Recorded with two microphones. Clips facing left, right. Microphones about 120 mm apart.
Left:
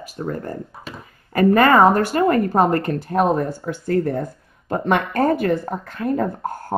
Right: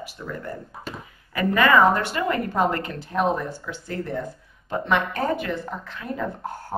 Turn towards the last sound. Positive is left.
turn(degrees=45)  # may be behind; listen again after turning